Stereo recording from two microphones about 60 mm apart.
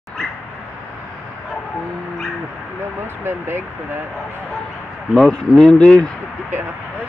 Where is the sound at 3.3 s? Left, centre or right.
Right.